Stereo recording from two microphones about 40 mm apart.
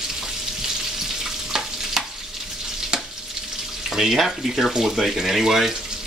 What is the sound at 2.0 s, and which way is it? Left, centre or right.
Frying, centre.